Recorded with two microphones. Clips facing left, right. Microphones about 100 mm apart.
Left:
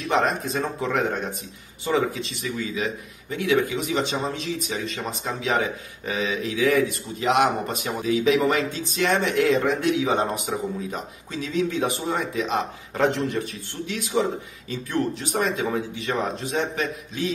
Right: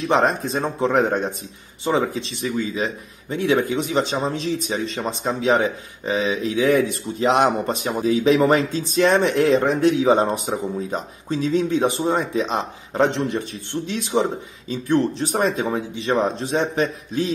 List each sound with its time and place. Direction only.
0.1 s speech: 30° right (ahead or behind)